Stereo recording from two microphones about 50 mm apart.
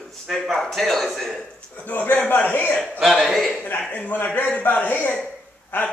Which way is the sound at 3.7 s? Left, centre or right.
Left.